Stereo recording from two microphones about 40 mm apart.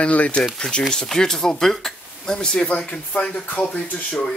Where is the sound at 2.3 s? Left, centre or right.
Left.